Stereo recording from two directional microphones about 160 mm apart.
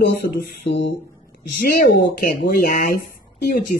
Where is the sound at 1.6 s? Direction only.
70° left (ahead or behind).